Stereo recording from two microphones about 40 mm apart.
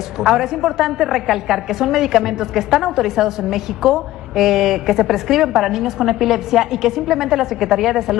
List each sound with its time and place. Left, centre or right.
0.2 s a woman's voice: centre